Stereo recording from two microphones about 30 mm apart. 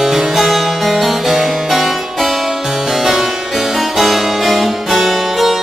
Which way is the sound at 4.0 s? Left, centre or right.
Centre.